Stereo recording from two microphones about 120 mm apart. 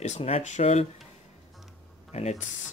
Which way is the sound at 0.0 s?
70° left (ahead or behind).